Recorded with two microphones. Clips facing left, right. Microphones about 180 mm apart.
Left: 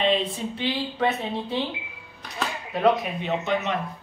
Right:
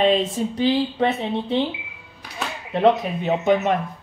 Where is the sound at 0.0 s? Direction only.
45° right (ahead or behind).